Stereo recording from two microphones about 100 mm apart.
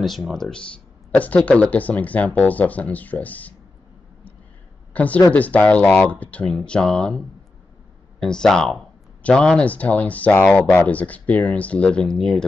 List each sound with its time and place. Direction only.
0.0 s speech: centre (ahead or behind)
4.9 s speech: 15° left (ahead or behind)